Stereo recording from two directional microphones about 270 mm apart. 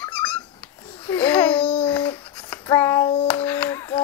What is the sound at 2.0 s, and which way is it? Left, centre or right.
Babbling, centre.